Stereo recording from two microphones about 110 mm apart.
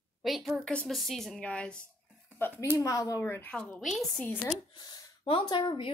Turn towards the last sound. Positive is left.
turn(degrees=45)  # may be behind; listen again after turning